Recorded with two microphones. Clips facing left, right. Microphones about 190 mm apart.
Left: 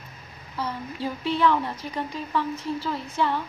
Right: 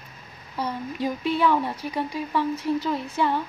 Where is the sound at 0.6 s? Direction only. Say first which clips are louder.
Right 3 dB; 15° right (ahead or behind).